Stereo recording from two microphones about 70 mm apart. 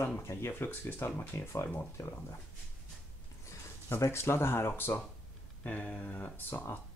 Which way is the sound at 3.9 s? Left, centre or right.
Left.